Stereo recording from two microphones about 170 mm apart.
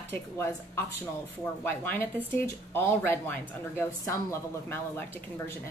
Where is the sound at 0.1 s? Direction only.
15° left (ahead or behind).